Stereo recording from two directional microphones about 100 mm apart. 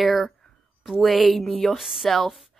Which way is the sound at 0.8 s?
Centre (ahead or behind).